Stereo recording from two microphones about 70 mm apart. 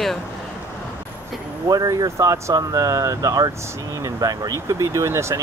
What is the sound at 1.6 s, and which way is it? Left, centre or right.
Speech, right.